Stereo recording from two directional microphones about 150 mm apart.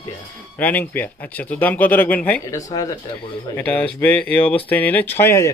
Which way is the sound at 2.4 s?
20° left (ahead or behind).